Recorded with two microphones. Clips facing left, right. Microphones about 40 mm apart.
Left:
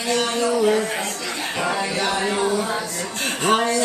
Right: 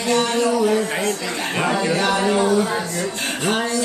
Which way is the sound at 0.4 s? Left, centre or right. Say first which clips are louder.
Right 1 dB; left.